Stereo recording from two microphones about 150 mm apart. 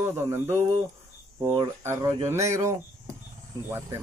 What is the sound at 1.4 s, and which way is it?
Speech, 30° right (ahead or behind).